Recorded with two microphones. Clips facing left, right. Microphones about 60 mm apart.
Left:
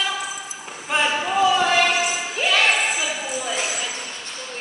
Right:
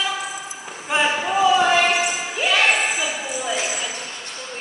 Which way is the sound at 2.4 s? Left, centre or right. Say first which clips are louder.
Right 1 dB; centre.